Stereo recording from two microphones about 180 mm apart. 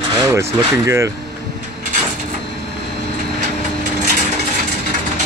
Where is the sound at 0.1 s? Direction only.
20° right (ahead or behind).